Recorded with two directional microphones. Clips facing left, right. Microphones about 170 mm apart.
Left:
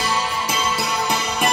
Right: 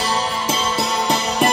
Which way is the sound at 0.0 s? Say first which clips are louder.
Right 2 dB; 30° right (ahead or behind).